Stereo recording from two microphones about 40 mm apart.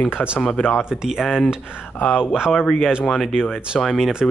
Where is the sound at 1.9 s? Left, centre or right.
Left.